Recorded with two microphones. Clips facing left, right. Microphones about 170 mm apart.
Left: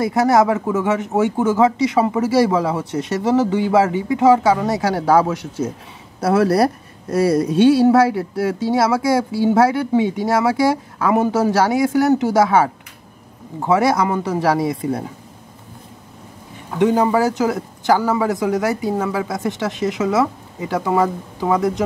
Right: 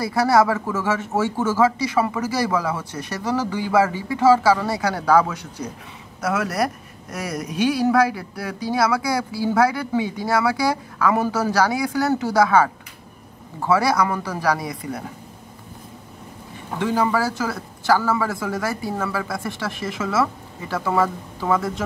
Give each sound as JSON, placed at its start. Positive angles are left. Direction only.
{"t": 0.0, "sound": "speech", "side_deg": 20}
{"t": 16.7, "sound": "speech", "side_deg": 20}